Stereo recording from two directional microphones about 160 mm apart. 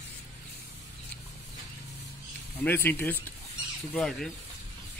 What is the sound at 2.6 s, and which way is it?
Speech, 15° left (ahead or behind).